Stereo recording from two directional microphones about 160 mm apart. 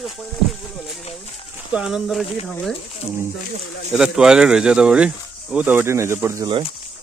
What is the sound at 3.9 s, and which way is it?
Speech, 5° right (ahead or behind).